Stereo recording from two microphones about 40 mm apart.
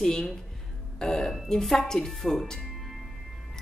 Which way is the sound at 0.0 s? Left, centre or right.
Centre.